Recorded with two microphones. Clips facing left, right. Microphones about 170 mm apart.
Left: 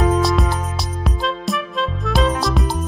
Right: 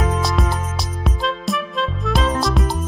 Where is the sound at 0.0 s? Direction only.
Centre (ahead or behind).